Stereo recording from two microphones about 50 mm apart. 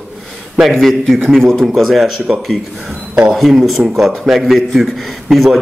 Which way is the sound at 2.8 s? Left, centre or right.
Centre.